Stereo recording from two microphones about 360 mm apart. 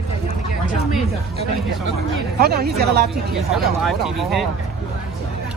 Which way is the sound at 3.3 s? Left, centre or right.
Centre.